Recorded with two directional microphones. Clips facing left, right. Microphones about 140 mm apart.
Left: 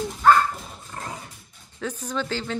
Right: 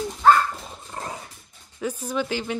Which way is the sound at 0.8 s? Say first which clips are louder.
Right 2 dB; 25° right (ahead or behind).